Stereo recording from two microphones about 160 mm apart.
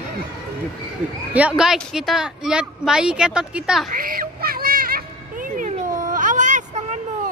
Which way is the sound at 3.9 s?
65° right (ahead or behind).